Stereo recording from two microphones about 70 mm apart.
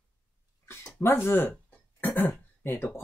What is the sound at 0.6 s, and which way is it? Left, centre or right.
Speech, left.